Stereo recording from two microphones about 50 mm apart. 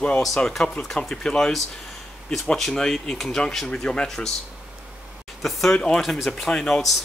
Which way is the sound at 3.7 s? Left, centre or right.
Centre.